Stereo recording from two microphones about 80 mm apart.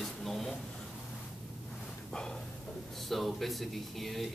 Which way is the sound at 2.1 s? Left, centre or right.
Centre.